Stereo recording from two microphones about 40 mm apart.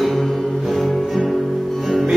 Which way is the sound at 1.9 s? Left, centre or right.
Centre.